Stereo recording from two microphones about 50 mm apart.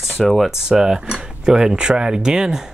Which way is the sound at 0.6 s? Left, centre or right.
Centre.